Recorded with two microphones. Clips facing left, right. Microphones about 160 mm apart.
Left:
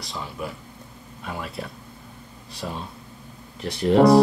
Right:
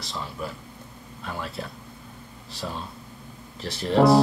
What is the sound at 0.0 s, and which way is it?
Speech, centre (ahead or behind).